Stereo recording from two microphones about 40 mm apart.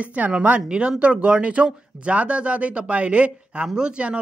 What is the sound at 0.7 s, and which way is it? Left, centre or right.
Speech, right.